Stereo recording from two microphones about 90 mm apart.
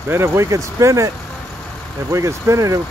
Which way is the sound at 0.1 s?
30° right (ahead or behind).